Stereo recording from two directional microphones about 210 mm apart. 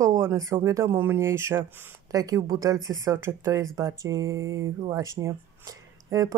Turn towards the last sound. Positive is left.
turn(degrees=-15)  # may be behind; listen again after turning